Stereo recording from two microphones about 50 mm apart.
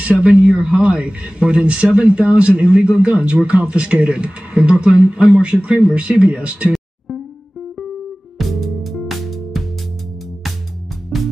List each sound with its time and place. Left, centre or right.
0.0 s speech: right
8.4 s music: centre
11.1 s music: centre